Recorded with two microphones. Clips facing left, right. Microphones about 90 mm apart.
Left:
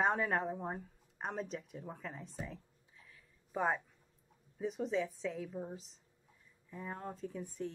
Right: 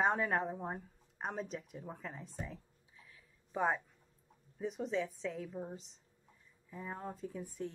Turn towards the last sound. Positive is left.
turn(degrees=0)  # may be behind; listen again after turning